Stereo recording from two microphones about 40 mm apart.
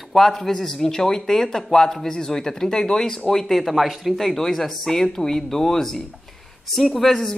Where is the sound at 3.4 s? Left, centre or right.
Centre.